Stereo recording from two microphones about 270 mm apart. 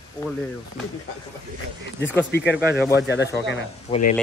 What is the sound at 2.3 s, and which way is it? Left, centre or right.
Speech, left.